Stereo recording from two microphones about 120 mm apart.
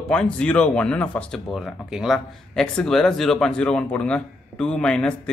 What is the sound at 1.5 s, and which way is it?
Speech, 5° right (ahead or behind).